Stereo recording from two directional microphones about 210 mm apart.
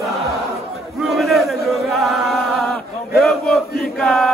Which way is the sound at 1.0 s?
Centre (ahead or behind).